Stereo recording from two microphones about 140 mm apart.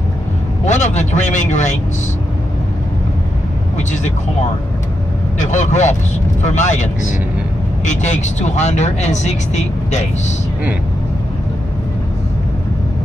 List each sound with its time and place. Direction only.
0.7 s speech: 55° left (ahead or behind)
3.7 s speech: 60° left (ahead or behind)
5.4 s speech: 60° left (ahead or behind)